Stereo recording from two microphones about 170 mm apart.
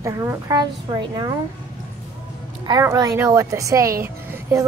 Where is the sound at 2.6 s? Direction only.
20° right (ahead or behind).